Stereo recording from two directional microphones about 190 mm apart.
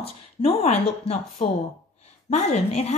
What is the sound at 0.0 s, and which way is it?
A woman's voice, 30° left (ahead or behind).